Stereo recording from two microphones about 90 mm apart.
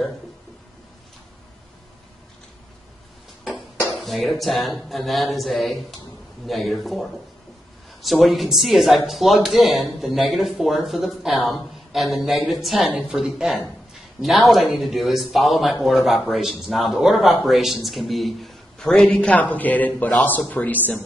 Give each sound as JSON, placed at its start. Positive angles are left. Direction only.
{"t": 3.9, "sound": "a man's voice", "side_deg": 0}